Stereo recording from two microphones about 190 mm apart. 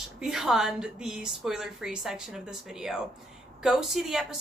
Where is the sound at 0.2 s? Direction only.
Centre (ahead or behind).